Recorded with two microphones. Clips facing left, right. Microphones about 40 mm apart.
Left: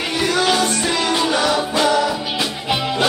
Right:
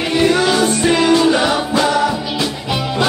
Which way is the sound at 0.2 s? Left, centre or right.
Right.